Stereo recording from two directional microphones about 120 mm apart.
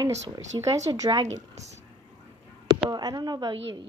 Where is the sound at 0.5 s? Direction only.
40° right (ahead or behind).